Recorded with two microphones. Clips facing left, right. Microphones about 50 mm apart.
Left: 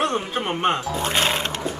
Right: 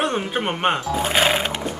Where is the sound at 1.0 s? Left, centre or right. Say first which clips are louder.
Right 3 dB; centre.